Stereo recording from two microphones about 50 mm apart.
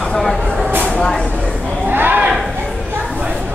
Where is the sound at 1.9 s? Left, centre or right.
Right.